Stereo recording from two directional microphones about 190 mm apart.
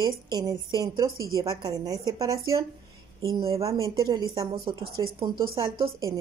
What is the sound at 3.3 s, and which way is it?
Speech, 30° right (ahead or behind).